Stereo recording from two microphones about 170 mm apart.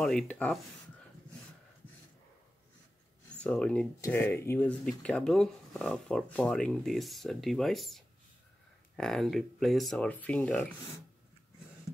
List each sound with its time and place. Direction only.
0.0 s speech: 5° left (ahead or behind)
3.3 s speech: 5° left (ahead or behind)